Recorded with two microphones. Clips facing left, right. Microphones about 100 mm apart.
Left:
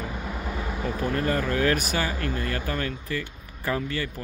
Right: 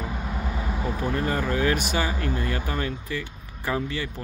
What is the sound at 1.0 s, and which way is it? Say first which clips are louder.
Speech: left 1 dB; 15° right (ahead or behind).